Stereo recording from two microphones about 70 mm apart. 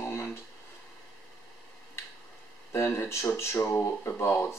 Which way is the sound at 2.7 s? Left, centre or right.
Left.